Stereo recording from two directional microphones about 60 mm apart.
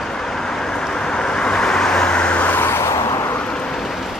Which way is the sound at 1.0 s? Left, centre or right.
Centre.